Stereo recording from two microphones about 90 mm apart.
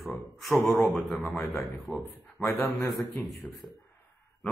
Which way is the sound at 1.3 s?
25° left (ahead or behind).